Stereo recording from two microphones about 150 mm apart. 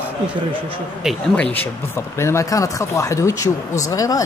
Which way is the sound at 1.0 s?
5° left (ahead or behind).